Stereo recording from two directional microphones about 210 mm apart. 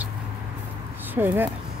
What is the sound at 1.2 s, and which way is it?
Speech, 10° right (ahead or behind).